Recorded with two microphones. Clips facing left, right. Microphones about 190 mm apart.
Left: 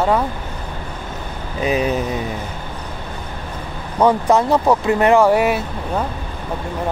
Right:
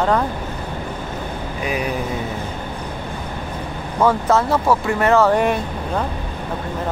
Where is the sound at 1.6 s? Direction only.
25° left (ahead or behind).